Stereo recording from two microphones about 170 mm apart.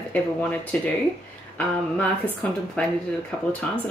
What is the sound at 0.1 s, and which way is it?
Speech, 10° left (ahead or behind).